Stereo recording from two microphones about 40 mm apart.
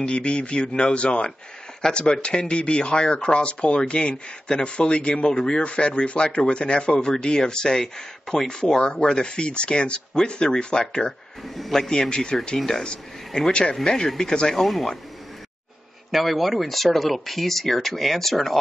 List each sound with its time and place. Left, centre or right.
0.0 s speech: left
11.4 s speech: centre
11.9 s speech: centre
12.8 s speech: left
14.5 s speech: centre
16.1 s speech: centre